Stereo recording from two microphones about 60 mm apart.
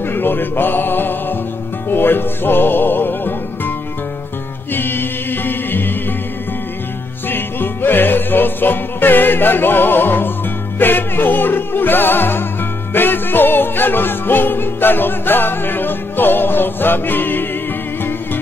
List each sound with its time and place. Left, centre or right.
0.0 s music: left
4.7 s music: left
7.2 s music: left